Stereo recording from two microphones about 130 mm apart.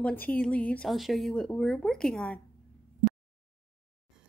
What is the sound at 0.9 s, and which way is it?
A woman's voice, centre (ahead or behind).